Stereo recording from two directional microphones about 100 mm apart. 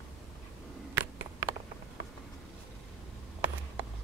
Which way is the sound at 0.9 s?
20° right (ahead or behind).